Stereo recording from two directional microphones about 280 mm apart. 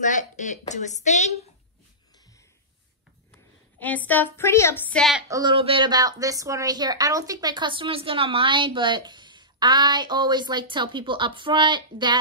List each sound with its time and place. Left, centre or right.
0.0 s a woman's voice: left
3.8 s a woman's voice: centre
5.3 s speech: centre